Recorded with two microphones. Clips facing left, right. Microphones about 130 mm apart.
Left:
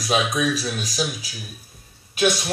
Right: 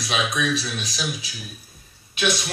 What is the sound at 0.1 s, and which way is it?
Speech, 40° left (ahead or behind).